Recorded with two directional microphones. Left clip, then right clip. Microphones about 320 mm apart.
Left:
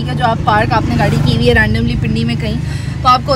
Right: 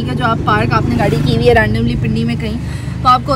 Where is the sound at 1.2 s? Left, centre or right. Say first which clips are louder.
Right 2 dB; right.